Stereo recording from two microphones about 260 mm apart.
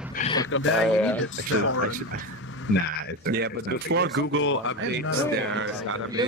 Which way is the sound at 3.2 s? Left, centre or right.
Right.